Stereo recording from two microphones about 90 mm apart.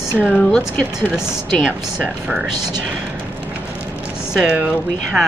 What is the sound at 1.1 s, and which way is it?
Speech, 5° right (ahead or behind).